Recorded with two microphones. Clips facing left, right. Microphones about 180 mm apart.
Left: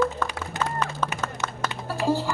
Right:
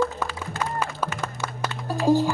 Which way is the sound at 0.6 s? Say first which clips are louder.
Even; 10° right (ahead or behind).